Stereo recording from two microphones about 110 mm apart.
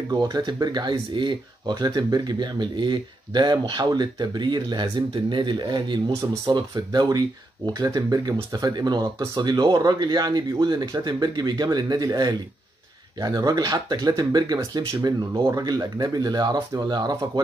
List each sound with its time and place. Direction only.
0.1 s speech: 40° right (ahead or behind)